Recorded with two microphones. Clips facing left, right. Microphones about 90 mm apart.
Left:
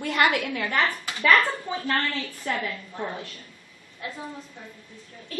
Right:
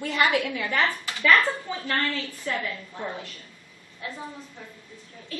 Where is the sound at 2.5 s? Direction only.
45° left (ahead or behind).